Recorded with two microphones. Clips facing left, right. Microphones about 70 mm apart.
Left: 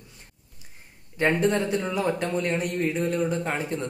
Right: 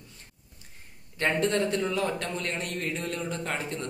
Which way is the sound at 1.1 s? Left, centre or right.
Centre.